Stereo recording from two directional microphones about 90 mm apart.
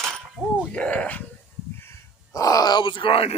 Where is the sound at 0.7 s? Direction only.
15° left (ahead or behind).